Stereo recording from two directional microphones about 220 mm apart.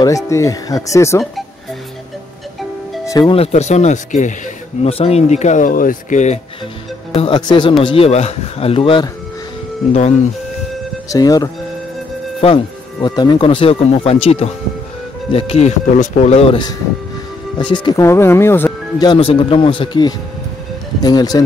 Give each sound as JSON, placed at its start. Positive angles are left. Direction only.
{"t": 0.0, "sound": "speech", "side_deg": 15}
{"t": 3.1, "sound": "speech", "side_deg": 20}
{"t": 7.2, "sound": "speech", "side_deg": 20}
{"t": 11.1, "sound": "speech", "side_deg": 15}